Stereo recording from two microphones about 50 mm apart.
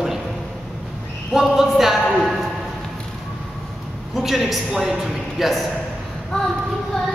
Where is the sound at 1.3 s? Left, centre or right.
Centre.